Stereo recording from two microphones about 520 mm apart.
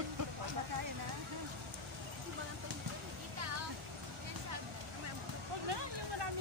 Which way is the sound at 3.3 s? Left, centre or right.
Right.